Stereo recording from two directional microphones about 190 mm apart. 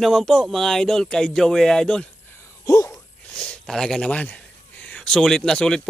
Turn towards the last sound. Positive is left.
turn(degrees=5)  # may be behind; listen again after turning